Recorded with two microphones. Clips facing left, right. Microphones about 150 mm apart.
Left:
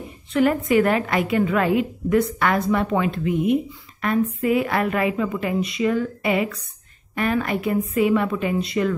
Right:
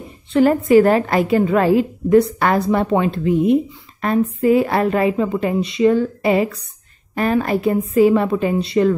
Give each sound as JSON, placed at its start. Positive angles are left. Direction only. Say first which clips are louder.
{"t": 0.3, "sound": "a woman's voice", "louder": "right 6 dB", "side_deg": -35}